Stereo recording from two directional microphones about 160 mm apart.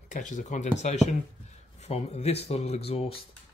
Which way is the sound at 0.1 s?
50° left (ahead or behind).